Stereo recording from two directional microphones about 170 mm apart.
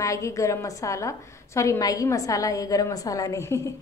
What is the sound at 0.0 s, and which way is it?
A woman's voice, 20° left (ahead or behind).